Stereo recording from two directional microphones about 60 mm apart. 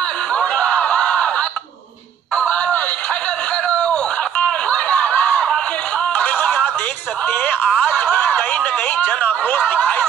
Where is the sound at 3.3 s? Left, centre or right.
Centre.